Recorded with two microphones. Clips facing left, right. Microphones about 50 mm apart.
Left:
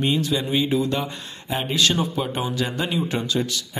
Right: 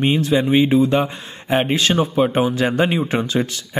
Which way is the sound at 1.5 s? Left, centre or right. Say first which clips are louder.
Right 8 dB; right.